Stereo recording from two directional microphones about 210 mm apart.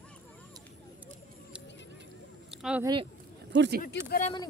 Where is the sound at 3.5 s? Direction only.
55° right (ahead or behind).